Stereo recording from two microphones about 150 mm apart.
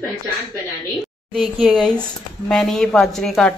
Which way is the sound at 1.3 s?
Centre (ahead or behind).